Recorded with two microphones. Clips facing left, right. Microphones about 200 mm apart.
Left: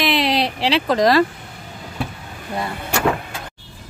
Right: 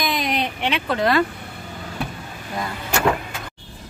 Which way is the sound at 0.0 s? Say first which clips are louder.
Left 5 dB; 80° left.